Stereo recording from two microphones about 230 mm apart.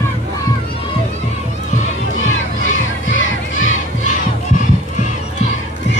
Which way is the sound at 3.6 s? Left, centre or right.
Left.